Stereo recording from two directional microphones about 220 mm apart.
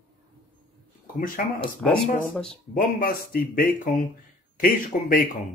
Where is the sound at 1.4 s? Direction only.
40° left (ahead or behind).